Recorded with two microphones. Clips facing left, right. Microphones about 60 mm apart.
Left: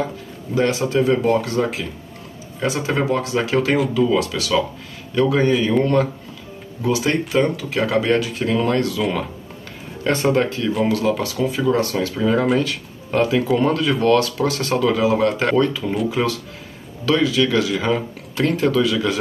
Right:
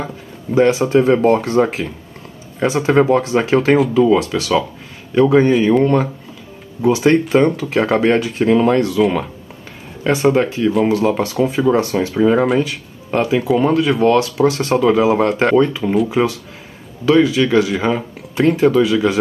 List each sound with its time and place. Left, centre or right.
0.6 s speech: right
0.9 s speech: right
6.8 s speech: right
10.0 s speech: centre
10.9 s speech: right
15.5 s speech: centre